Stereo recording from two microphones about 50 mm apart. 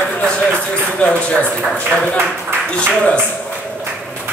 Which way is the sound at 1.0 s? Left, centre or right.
Left.